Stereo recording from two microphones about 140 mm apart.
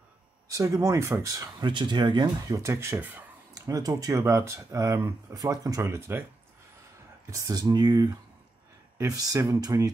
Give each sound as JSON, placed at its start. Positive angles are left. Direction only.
{"t": 0.5, "sound": "speech", "side_deg": -20}
{"t": 3.5, "sound": "speech", "side_deg": -25}
{"t": 7.2, "sound": "speech", "side_deg": -25}